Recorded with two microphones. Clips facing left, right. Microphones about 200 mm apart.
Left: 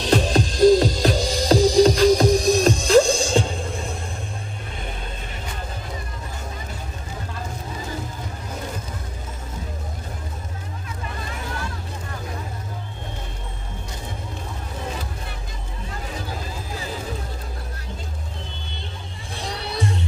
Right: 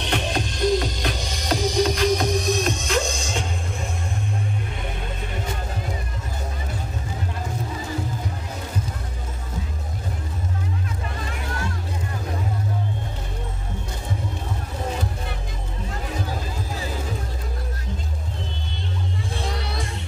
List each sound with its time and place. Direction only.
0.0 s music: 35° left (ahead or behind)